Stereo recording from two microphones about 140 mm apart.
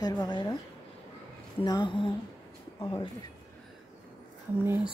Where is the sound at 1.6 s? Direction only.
35° left (ahead or behind).